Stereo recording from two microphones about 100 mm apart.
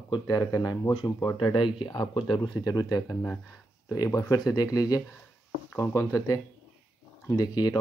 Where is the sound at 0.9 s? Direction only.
55° left (ahead or behind); by 3.0 s 40° left (ahead or behind).